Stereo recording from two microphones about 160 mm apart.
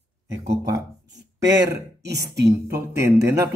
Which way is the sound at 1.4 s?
90° right.